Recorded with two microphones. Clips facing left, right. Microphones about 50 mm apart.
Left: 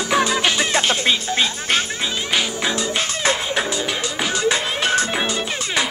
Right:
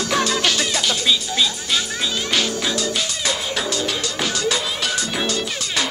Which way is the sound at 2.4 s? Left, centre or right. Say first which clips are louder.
Even; left.